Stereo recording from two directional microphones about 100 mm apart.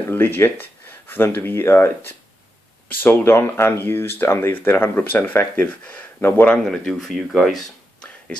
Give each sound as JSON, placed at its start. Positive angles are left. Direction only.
{"t": 0.0, "sound": "speech", "side_deg": 20}
{"t": 3.0, "sound": "speech", "side_deg": 20}